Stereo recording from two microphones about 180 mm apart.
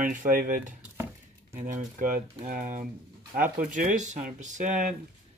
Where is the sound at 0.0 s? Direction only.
50° right (ahead or behind).